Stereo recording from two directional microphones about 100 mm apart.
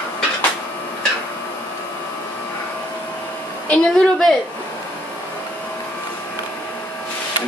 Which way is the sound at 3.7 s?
5° left (ahead or behind).